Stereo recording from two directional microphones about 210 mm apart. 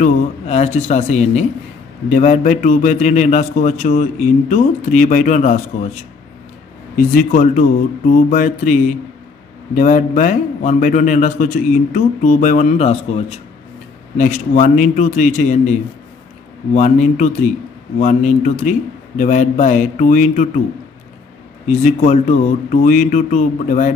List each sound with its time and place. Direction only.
0.0 s speech: 30° left (ahead or behind)
7.2 s speech: 40° left (ahead or behind)
16.7 s speech: 35° left (ahead or behind)
21.6 s speech: 35° left (ahead or behind)